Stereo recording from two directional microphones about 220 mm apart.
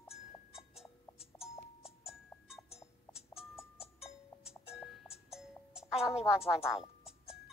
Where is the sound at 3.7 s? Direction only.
25° left (ahead or behind).